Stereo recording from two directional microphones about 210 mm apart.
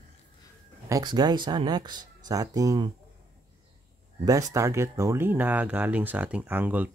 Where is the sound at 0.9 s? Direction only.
20° right (ahead or behind).